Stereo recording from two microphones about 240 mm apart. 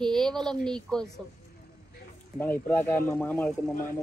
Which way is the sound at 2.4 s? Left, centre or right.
Centre.